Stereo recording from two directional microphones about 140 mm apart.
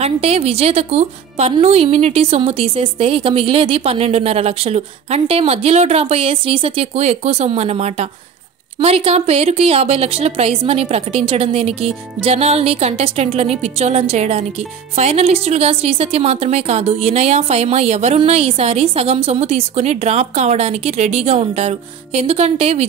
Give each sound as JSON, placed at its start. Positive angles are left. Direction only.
{"t": 0.0, "sound": "a woman's voice", "side_deg": -45}